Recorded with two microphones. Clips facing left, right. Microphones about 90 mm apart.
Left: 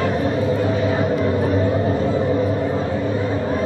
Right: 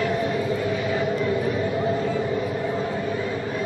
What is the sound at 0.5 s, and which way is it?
Music, 40° left (ahead or behind).